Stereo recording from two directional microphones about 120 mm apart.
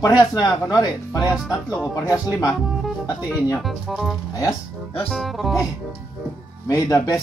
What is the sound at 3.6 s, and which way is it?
Speech, centre (ahead or behind).